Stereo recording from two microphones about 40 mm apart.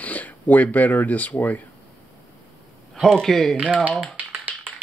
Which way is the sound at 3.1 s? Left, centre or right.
Centre.